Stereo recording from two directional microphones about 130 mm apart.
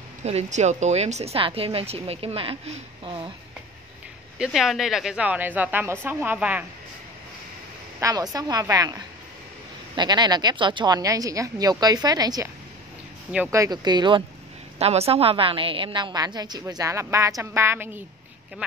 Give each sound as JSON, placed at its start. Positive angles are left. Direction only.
{"t": 0.2, "sound": "a woman's voice", "side_deg": -55}
{"t": 4.4, "sound": "a woman's voice", "side_deg": 0}
{"t": 8.0, "sound": "a woman's voice", "side_deg": -30}
{"t": 13.5, "sound": "a woman's voice", "side_deg": -30}
{"t": 14.8, "sound": "a woman's voice", "side_deg": -50}